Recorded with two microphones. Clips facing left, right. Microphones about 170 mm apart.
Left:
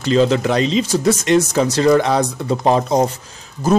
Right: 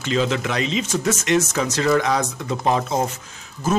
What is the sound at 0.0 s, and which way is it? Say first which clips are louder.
Speech: left 7 dB; 35° left (ahead or behind).